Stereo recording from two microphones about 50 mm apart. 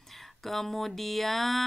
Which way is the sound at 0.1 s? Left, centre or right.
Centre.